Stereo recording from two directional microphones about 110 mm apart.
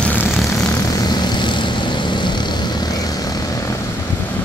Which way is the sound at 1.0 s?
40° left (ahead or behind).